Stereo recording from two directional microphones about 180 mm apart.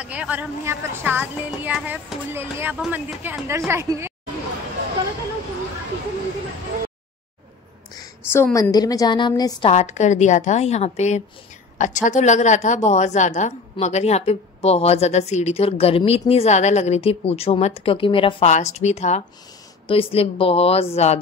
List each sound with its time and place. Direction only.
0.0 s speech: 5° right (ahead or behind)
7.9 s a sound: 15° left (ahead or behind)
8.7 s a woman's voice: 20° left (ahead or behind)
9.7 s a woman's voice: 40° left (ahead or behind)